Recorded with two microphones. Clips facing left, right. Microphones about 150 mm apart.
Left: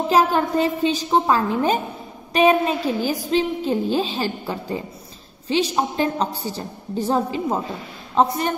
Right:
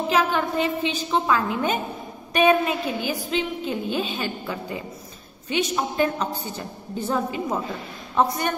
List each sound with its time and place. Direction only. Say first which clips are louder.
0.1 s a woman's voice: left 5 dB; 35° left (ahead or behind)